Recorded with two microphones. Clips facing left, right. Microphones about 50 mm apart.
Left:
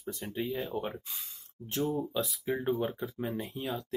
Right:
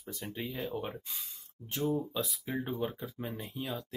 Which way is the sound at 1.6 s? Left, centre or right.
Right.